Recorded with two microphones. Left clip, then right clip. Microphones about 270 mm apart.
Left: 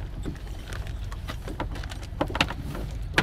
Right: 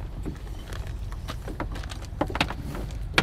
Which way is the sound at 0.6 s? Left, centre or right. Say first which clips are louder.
Left 2 dB; centre.